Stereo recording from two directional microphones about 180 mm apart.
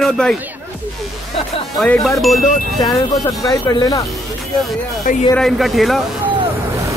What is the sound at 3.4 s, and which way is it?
Speech, 20° left (ahead or behind).